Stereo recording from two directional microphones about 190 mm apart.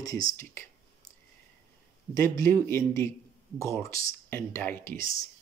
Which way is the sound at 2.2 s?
15° left (ahead or behind).